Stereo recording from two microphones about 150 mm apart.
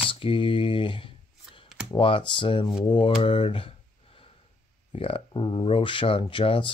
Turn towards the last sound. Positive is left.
turn(degrees=35)  # may be behind; listen again after turning